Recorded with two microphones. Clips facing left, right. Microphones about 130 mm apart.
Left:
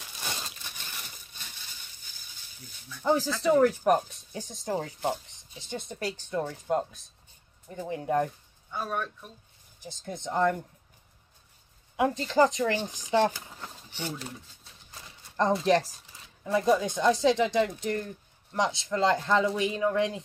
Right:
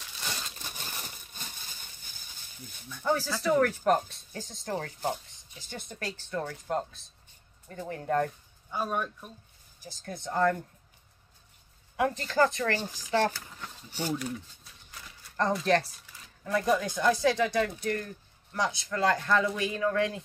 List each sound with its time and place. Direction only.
0.7 s a sound: 40° right (ahead or behind)
3.0 s speech: 15° left (ahead or behind)
9.8 s speech: 20° left (ahead or behind)
12.0 s speech: 15° left (ahead or behind)
14.1 s a sound: 30° left (ahead or behind)
16.4 s speech: 20° left (ahead or behind)